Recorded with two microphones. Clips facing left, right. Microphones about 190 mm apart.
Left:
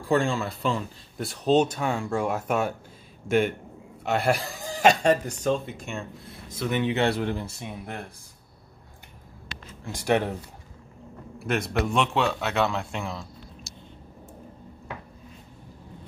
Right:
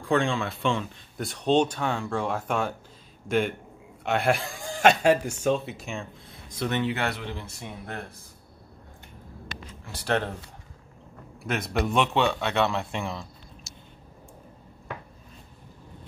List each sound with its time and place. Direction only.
0.1 s speech: 5° left (ahead or behind)
6.7 s speech: 20° left (ahead or behind)
7.2 s speech: 45° left (ahead or behind)
9.9 s speech: 10° left (ahead or behind)
11.3 s speech: centre (ahead or behind)